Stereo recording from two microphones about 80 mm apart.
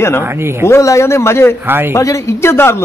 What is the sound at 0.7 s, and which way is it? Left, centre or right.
A man's voice, left.